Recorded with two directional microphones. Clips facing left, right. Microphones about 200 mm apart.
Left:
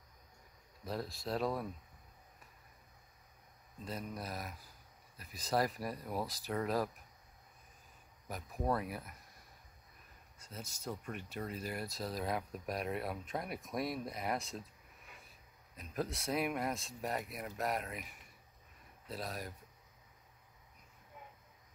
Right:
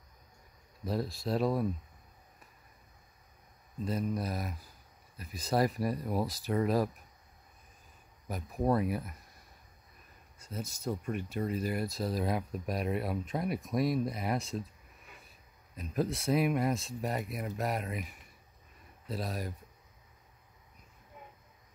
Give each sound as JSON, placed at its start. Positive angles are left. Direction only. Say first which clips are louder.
{"t": 0.8, "sound": "speech", "louder": "right 6 dB", "side_deg": -5}
{"t": 3.8, "sound": "speech", "louder": "right 9 dB", "side_deg": -10}
{"t": 8.6, "sound": "speech", "louder": "right 7 dB", "side_deg": -15}
{"t": 10.5, "sound": "speech", "louder": "right 7 dB", "side_deg": -10}
{"t": 16.0, "sound": "speech", "louder": "right 7 dB", "side_deg": -5}
{"t": 19.1, "sound": "speech", "louder": "right 6 dB", "side_deg": -5}